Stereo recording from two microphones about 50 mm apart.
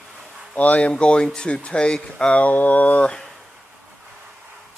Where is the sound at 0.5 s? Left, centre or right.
Left.